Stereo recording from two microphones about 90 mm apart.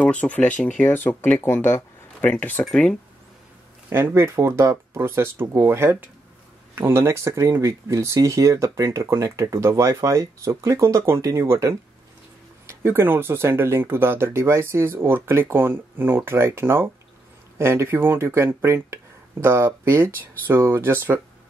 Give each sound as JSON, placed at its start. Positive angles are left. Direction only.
{"t": 0.0, "sound": "speech", "side_deg": 15}
{"t": 3.9, "sound": "speech", "side_deg": -25}